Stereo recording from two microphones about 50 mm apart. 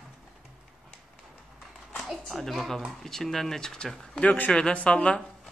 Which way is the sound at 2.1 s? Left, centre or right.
Centre.